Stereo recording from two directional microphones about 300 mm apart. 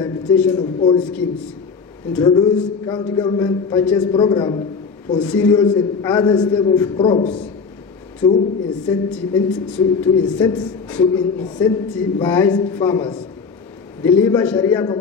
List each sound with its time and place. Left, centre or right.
0.0 s a sound: centre
0.6 s a man's voice: centre
0.9 s a man's voice: centre
8.9 s a man's voice: centre
14.2 s a man's voice: centre